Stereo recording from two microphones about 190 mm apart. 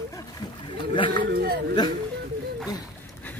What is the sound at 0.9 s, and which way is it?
Speech, 25° left (ahead or behind).